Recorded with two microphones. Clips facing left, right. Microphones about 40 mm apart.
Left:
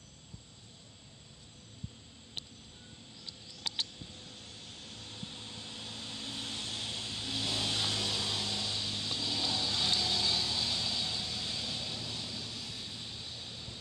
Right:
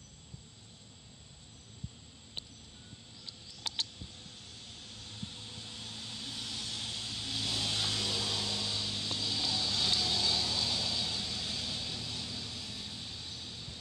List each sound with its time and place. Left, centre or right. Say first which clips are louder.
4.0 s vehicle: left 1 dB; centre